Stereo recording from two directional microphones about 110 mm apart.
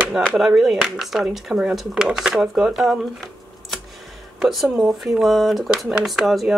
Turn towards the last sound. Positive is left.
turn(degrees=0)  # may be behind; listen again after turning